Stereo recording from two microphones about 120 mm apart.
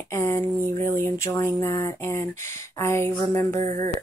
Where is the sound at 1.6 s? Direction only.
20° left (ahead or behind).